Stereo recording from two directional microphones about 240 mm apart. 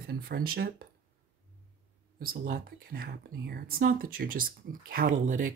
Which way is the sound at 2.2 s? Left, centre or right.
Right.